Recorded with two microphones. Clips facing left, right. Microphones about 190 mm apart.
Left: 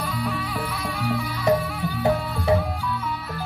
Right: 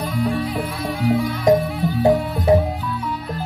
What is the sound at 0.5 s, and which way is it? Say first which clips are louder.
Music: right 5 dB; 25° right (ahead or behind).